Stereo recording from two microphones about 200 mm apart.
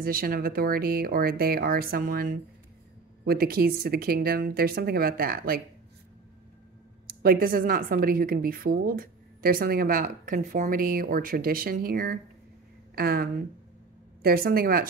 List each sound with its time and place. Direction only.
0.0 s a woman's voice: 45° right (ahead or behind)
7.1 s a woman's voice: 45° right (ahead or behind)